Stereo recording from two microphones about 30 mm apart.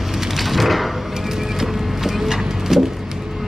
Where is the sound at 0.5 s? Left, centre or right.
Centre.